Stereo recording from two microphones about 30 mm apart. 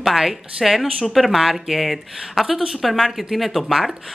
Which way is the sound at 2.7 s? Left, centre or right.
Centre.